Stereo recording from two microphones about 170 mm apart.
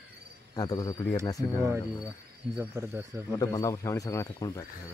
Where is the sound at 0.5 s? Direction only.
20° left (ahead or behind).